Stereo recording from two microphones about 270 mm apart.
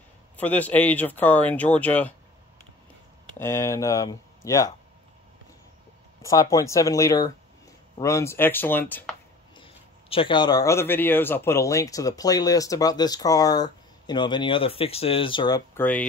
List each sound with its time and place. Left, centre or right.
0.4 s speech: centre
3.3 s a man's voice: centre
6.2 s a man's voice: centre
9.6 s a man's voice: centre